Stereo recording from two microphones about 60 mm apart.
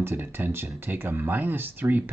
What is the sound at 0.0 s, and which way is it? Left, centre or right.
Speech, right.